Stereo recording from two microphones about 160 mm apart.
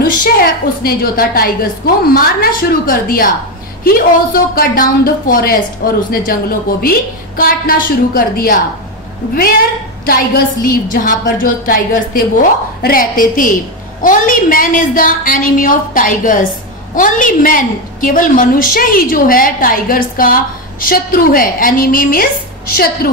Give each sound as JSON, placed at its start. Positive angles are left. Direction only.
{"t": 0.0, "sound": "a woman's voice", "side_deg": 60}